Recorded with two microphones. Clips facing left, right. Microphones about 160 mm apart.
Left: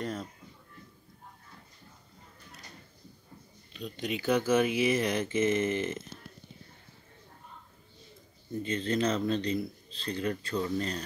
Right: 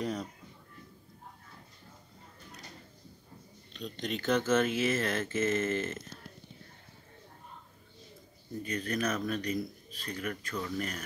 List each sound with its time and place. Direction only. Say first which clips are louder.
0.0 s a sound: right 1 dB; centre (ahead or behind)
3.7 s speech: left 2 dB; 10° left (ahead or behind)
8.6 s speech: left 4 dB; 25° left (ahead or behind)